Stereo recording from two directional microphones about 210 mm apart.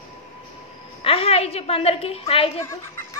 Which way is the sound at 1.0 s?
25° left (ahead or behind).